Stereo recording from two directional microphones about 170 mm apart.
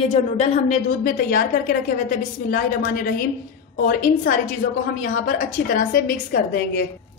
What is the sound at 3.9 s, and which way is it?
A woman's voice, 55° left (ahead or behind).